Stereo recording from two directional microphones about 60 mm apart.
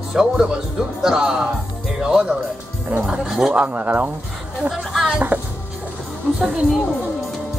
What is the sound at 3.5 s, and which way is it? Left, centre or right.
Speech, right.